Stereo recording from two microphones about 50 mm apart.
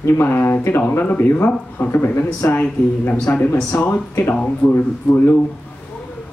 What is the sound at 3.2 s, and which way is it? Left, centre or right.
Speech, left.